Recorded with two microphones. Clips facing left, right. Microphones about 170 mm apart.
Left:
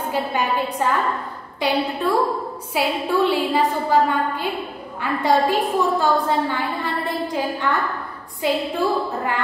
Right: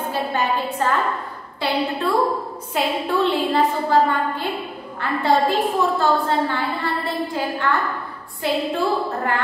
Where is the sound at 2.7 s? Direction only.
10° left (ahead or behind).